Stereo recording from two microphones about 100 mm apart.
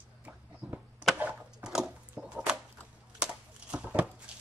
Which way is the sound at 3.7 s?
15° right (ahead or behind).